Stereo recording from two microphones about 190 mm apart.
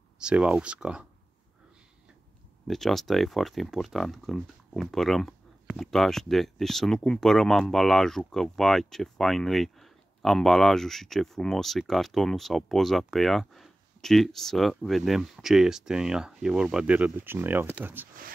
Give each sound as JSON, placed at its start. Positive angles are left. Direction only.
{"t": 0.2, "sound": "speech", "side_deg": -5}
{"t": 2.7, "sound": "speech", "side_deg": 0}